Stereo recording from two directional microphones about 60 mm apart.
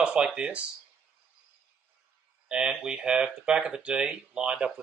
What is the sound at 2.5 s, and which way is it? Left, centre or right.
Speech, centre.